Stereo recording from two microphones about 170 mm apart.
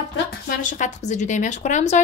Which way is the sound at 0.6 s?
45° left (ahead or behind).